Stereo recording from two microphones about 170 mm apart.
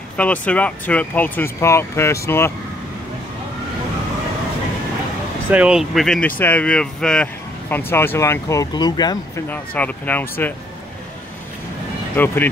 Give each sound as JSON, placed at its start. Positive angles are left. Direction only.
{"t": 0.2, "sound": "speech", "side_deg": 10}
{"t": 5.5, "sound": "speech", "side_deg": -5}
{"t": 9.5, "sound": "speech", "side_deg": 10}
{"t": 12.2, "sound": "speech", "side_deg": 10}